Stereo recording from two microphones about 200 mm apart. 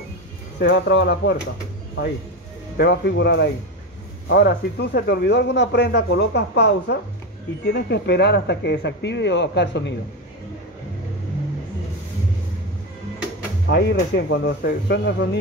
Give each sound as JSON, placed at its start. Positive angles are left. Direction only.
{"t": 0.6, "sound": "speech", "side_deg": 60}
{"t": 2.8, "sound": "speech", "side_deg": 55}
{"t": 13.7, "sound": "speech", "side_deg": 55}